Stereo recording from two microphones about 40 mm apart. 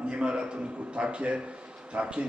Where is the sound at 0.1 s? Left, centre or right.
Right.